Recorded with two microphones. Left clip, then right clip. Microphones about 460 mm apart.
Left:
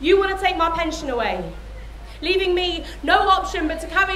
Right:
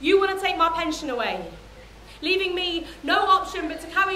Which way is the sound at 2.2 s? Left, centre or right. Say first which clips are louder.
Left 4 dB; left.